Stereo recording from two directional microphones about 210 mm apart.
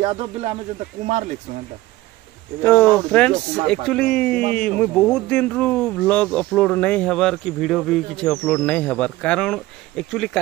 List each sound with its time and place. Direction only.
0.0 s speech: 30° right (ahead or behind)
2.6 s speech: 10° left (ahead or behind)